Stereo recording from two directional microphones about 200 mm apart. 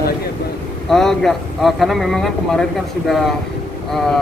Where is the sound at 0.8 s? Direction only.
Centre (ahead or behind).